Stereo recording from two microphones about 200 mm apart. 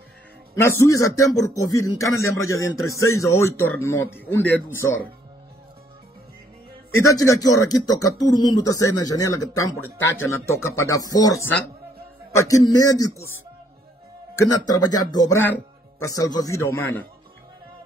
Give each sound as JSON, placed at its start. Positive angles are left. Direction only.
{"t": 0.6, "sound": "speech", "side_deg": 15}
{"t": 7.1, "sound": "speech", "side_deg": 15}
{"t": 14.3, "sound": "speech", "side_deg": 15}